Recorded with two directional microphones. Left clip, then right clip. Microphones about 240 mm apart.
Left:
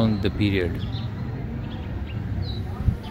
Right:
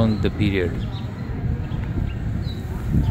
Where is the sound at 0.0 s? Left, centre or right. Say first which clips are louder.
Right 2 dB; centre.